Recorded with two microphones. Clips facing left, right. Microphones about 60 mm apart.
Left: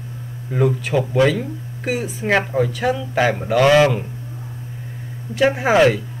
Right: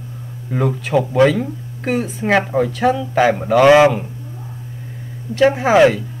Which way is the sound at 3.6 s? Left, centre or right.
Centre.